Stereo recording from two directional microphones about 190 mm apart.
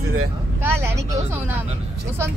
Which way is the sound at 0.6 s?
10° right (ahead or behind).